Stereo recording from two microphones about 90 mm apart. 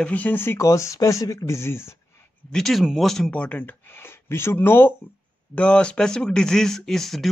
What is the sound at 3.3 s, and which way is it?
Speech, 15° left (ahead or behind).